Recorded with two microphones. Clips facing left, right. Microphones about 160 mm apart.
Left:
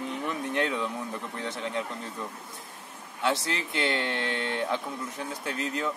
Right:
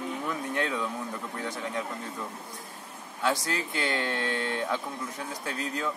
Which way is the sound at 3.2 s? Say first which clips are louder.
Even; 25° left (ahead or behind).